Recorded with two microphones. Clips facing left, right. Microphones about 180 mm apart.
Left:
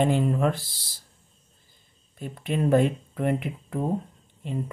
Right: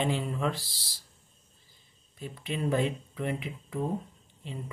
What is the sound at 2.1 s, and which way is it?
Speech, 55° left (ahead or behind).